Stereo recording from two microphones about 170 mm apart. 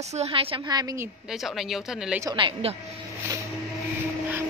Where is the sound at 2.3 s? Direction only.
30° right (ahead or behind).